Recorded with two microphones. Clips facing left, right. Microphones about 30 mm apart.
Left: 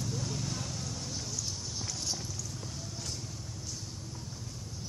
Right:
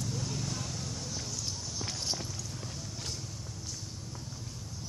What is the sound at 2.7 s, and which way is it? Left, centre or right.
Vehicle, centre.